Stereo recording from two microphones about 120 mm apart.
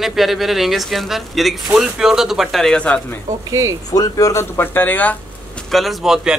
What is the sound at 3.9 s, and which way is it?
Speech, 30° left (ahead or behind).